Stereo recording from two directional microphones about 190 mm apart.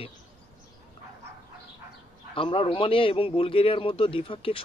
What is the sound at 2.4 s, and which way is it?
A man's voice, 30° left (ahead or behind).